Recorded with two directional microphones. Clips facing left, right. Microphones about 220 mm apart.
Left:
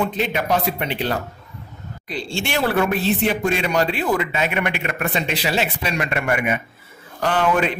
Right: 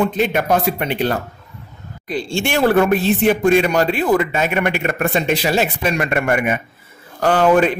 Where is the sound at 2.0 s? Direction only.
50° right (ahead or behind).